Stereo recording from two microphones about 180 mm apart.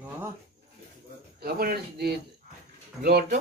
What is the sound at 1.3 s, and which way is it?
Speech, 55° right (ahead or behind).